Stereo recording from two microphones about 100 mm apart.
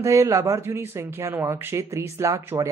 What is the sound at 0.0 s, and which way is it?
Speech, 30° right (ahead or behind).